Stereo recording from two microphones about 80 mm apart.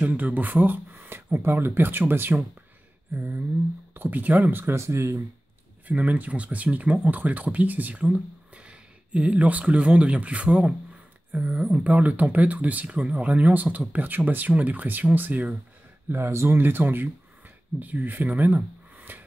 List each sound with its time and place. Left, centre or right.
0.0 s speech: centre; by 5.2 s right
5.9 s speech: centre